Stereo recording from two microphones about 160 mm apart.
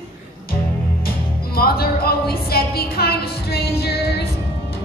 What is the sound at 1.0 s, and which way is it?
Music, 70° left (ahead or behind).